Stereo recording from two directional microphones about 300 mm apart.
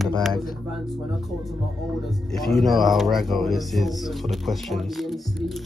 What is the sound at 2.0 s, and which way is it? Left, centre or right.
Speech, centre.